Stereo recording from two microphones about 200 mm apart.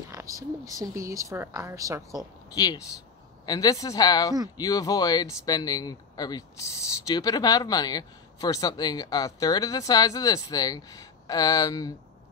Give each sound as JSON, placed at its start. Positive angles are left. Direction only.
{"t": 0.1, "sound": "speech", "side_deg": -15}
{"t": 2.5, "sound": "speech", "side_deg": 20}